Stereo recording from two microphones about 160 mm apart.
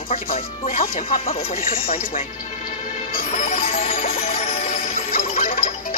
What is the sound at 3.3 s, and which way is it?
Music, 45° left (ahead or behind).